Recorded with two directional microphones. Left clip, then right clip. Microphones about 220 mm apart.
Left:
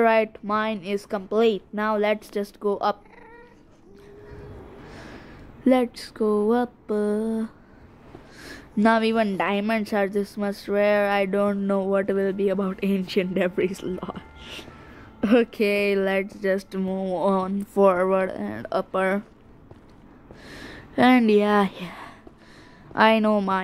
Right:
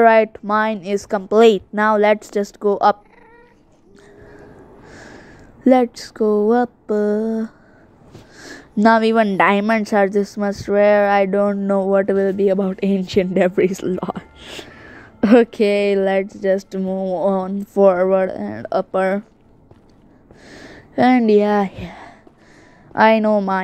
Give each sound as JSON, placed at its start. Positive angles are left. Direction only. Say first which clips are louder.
{"t": 0.0, "sound": "a woman's voice", "louder": "right 8 dB", "side_deg": -15}
{"t": 5.6, "sound": "a woman's voice", "louder": "right 7 dB", "side_deg": -10}
{"t": 20.4, "sound": "a woman's voice", "louder": "right 2 dB", "side_deg": -5}